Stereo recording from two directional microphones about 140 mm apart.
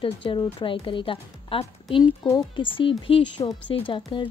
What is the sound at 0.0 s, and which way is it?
A woman's voice, 35° left (ahead or behind).